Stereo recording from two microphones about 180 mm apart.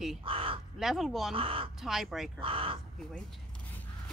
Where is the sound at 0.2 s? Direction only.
30° right (ahead or behind).